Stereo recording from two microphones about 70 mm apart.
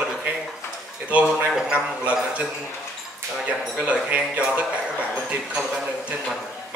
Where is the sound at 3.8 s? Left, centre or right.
Centre.